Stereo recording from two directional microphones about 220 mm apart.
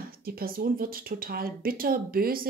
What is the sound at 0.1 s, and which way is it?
Speech, 40° right (ahead or behind).